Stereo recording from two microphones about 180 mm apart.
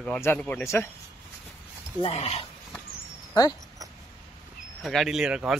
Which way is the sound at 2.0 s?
35° left (ahead or behind).